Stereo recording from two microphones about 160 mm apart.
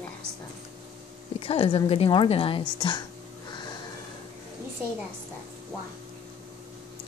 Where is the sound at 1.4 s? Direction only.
35° left (ahead or behind).